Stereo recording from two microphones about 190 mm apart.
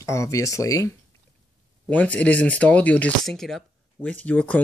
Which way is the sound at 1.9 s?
5° left (ahead or behind).